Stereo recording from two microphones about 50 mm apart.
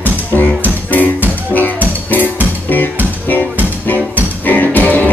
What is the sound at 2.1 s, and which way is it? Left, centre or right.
Music, left.